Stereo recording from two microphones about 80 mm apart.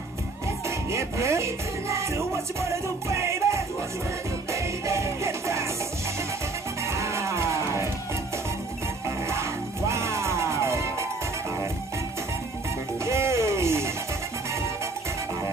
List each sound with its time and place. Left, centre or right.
0.7 s music: right
6.9 s music: right
9.3 s music: right
13.0 s music: right